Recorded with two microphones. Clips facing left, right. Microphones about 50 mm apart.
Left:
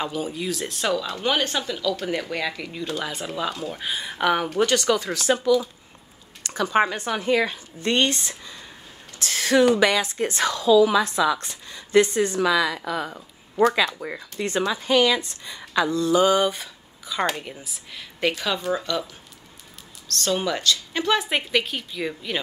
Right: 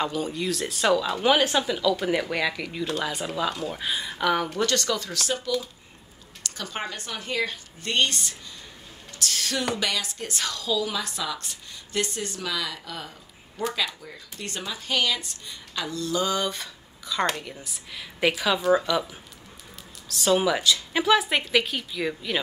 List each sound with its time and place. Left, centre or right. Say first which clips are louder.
0.0 s speech: even; centre
4.1 s a woman's voice: left 3 dB; centre
6.4 s a sound: left 10 dB; left
6.9 s a woman's voice: left 9 dB; left
13.8 s speech: left 7 dB; left
15.9 s a woman's voice: left 7 dB; left
16.5 s a sound: even; centre
17.3 s speech: left 1 dB; centre
17.6 s a woman's voice: even; centre
20.1 s speech: right 2 dB; centre